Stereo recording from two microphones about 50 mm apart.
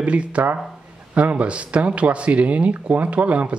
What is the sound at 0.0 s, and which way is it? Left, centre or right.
Speech, right.